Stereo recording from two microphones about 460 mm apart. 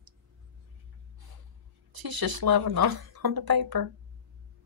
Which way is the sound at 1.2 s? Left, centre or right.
Right.